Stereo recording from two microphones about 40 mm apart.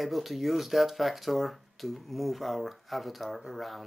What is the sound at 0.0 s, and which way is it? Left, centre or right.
Speech, centre.